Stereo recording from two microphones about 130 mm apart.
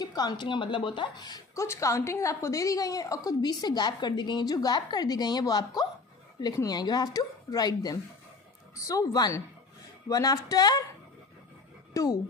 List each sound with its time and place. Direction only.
0.0 s a woman's voice: 30° left (ahead or behind)
11.9 s speech: 25° left (ahead or behind)